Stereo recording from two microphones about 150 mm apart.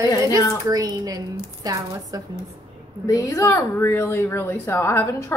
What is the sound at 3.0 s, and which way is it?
Speech, 20° left (ahead or behind).